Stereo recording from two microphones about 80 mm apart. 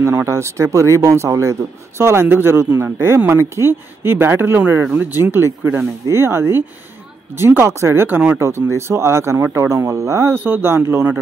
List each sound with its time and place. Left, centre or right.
0.0 s speech: right